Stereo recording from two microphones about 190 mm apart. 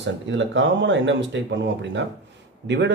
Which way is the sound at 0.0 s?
70° right (ahead or behind).